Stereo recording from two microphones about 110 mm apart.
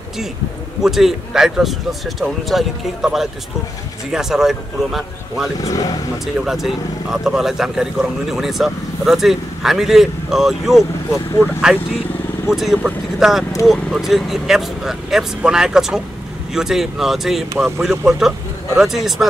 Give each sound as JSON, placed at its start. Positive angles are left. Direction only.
{"t": 0.8, "sound": "speech", "side_deg": -5}
{"t": 5.6, "sound": "speech", "side_deg": 30}
{"t": 6.2, "sound": "speech", "side_deg": -5}
{"t": 10.8, "sound": "speech", "side_deg": 25}
{"t": 11.4, "sound": "speech", "side_deg": -5}